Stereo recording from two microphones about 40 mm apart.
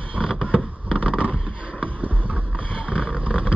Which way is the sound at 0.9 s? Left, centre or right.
Left.